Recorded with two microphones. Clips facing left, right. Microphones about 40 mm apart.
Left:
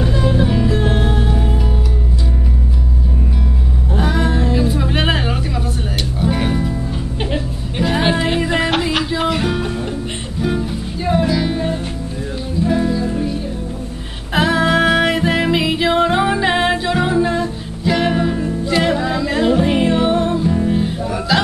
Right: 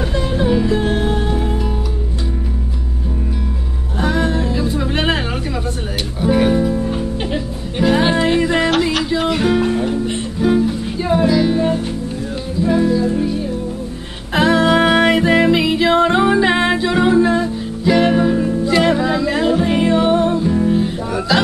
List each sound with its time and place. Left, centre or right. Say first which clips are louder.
0.0 s music: left 1 dB; centre
3.9 s music: right 1 dB; centre
6.2 s music: right 5 dB; centre
12.6 s music: right 3 dB; centre
14.3 s music: right 2 dB; centre